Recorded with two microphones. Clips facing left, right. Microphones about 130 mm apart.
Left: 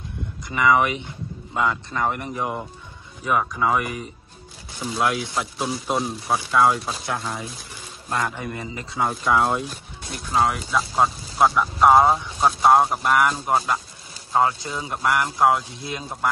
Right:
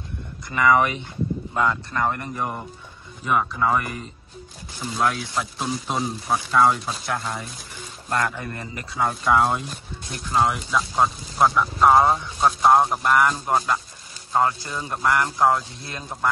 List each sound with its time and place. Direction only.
0.6 s speech: 15° left (ahead or behind)
3.3 s speech: centre (ahead or behind)
8.3 s speech: 15° left (ahead or behind)
9.0 s speech: centre (ahead or behind)
14.3 s speech: 15° left (ahead or behind)
15.0 s speech: 5° left (ahead or behind)
15.8 s speech: 20° left (ahead or behind)